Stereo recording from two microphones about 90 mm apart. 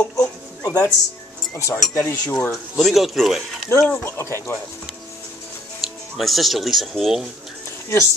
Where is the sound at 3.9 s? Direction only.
25° left (ahead or behind).